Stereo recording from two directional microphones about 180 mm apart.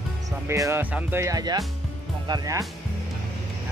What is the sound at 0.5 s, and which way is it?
Speech, 15° right (ahead or behind).